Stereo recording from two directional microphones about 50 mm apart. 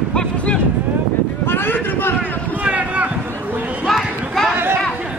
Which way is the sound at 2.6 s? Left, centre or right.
Right.